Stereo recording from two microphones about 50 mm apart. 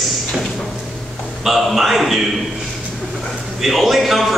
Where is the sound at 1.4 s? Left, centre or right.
Centre.